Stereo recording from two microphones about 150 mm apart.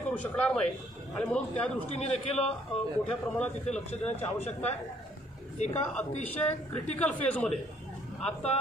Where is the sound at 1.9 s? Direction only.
45° left (ahead or behind).